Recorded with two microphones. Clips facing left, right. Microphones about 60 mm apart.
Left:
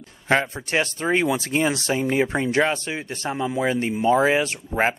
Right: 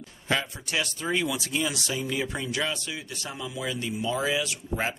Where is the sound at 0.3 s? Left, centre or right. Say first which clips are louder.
Left 7 dB; left.